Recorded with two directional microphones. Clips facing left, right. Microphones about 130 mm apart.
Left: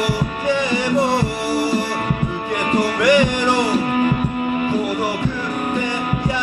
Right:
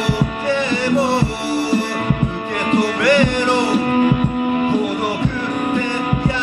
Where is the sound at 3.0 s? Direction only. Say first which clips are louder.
Even; 15° left (ahead or behind).